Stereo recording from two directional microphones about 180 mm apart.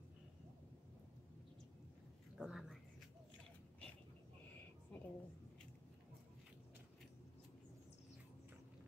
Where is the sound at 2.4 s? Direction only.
Centre (ahead or behind).